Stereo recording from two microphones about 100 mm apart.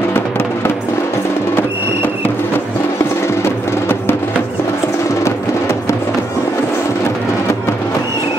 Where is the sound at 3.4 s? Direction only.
25° left (ahead or behind).